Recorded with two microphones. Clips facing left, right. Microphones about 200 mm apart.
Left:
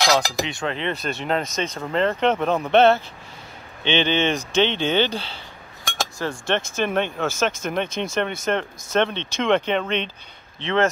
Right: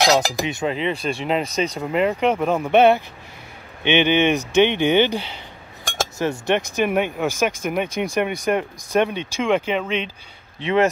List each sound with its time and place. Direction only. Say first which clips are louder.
0.0 s speech: right 3 dB; 20° right (ahead or behind)
0.7 s speech: right 4 dB; 5° right (ahead or behind)
1.4 s speech: right 4 dB; 35° right (ahead or behind)
1.8 s speech: even; 10° right (ahead or behind)